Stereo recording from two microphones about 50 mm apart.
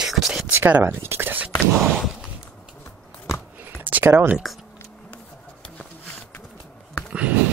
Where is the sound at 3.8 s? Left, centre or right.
Right.